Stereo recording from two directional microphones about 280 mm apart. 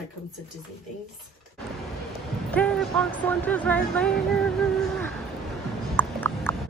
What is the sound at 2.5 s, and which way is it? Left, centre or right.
Speech, centre.